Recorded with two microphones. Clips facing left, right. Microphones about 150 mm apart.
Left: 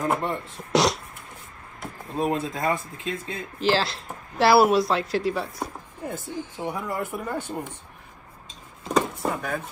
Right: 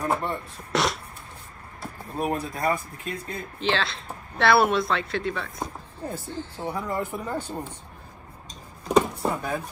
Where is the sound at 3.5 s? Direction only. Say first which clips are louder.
Left 4 dB; 5° left (ahead or behind).